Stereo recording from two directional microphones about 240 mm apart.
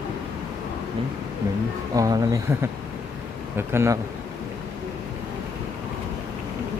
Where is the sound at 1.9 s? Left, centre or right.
Centre.